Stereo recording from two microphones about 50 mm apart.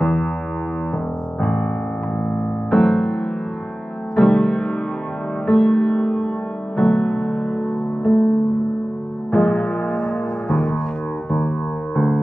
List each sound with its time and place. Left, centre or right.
0.0 s music: centre
1.4 s music: centre
2.7 s music: centre
4.2 s music: centre
9.3 s music: centre